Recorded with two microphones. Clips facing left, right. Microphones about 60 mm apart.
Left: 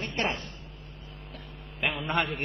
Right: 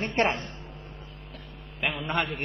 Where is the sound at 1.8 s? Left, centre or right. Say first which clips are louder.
Even; centre.